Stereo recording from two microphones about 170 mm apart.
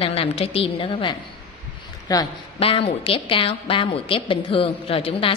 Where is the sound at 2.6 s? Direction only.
35° left (ahead or behind).